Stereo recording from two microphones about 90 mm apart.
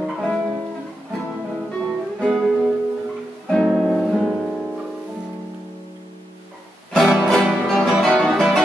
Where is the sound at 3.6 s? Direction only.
5° left (ahead or behind).